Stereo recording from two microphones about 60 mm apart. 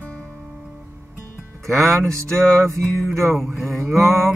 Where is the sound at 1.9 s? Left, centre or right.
Right.